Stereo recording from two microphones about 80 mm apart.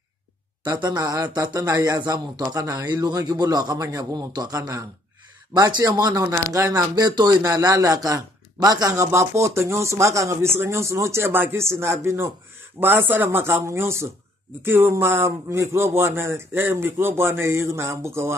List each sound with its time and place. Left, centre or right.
0.9 s a man's voice: right
2.4 s a man's voice: right
5.7 s speech: right
6.2 s a man's voice: right
7.1 s speech: right
7.4 s a man's voice: right
8.9 s a man's voice: right